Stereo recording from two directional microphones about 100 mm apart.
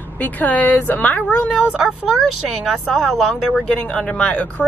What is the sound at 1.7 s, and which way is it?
Speech, 5° right (ahead or behind).